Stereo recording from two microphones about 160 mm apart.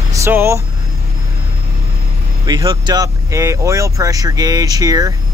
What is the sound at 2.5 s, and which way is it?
Speech, 25° right (ahead or behind).